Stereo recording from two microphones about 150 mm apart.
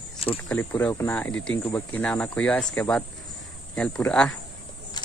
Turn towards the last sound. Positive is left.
turn(degrees=5)  # may be behind; listen again after turning